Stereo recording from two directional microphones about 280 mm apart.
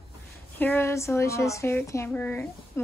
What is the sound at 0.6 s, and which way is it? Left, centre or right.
Speech, centre.